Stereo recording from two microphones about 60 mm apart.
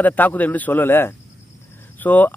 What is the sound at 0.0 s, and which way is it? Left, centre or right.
Speech, left.